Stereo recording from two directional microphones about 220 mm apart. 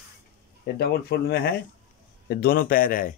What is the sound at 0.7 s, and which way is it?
Speech, 50° left (ahead or behind).